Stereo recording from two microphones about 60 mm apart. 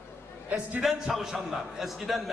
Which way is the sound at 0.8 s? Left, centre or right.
Centre.